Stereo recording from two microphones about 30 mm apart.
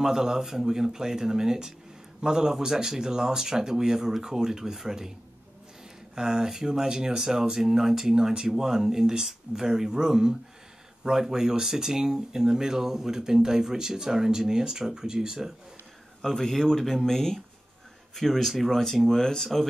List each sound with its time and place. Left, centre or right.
0.0 s speech: right
6.1 s speech: right
16.2 s speech: centre